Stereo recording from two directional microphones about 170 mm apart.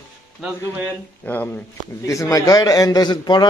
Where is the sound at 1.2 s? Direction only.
10° left (ahead or behind).